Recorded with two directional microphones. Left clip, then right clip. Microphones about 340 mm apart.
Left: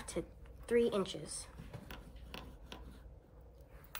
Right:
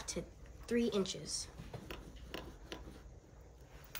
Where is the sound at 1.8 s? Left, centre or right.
Centre.